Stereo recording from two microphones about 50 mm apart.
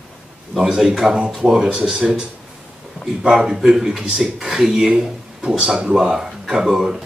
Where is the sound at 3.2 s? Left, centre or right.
Centre.